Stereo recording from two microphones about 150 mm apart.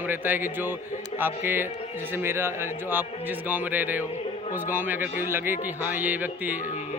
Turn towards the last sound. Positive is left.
turn(degrees=-10)  # may be behind; listen again after turning